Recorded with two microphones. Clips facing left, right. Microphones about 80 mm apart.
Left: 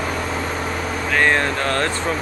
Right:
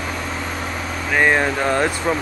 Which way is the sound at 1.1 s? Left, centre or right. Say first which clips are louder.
Right 2 dB; centre.